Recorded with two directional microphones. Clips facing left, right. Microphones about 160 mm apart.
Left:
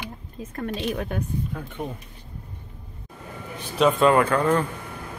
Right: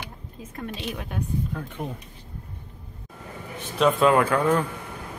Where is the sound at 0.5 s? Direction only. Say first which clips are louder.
Left 5 dB; 50° left (ahead or behind).